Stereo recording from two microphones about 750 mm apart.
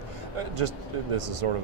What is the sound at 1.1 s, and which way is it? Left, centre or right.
Speech, right.